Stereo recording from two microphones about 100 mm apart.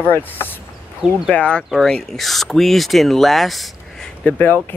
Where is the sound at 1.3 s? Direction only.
10° left (ahead or behind).